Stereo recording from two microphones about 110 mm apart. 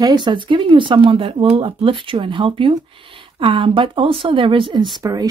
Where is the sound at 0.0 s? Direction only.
40° right (ahead or behind).